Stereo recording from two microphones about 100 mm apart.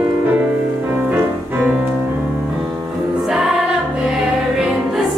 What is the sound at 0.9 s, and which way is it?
Music, 20° right (ahead or behind).